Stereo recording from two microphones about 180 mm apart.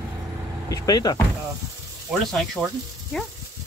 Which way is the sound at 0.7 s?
20° left (ahead or behind).